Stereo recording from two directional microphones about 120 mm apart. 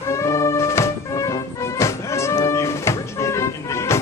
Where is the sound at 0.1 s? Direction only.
25° left (ahead or behind).